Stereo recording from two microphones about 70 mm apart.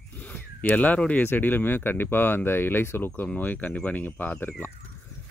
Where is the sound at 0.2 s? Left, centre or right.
Left.